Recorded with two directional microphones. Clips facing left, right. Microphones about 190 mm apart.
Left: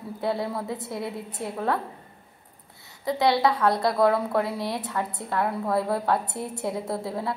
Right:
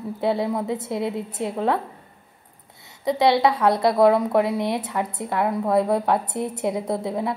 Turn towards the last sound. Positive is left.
turn(degrees=-20)  # may be behind; listen again after turning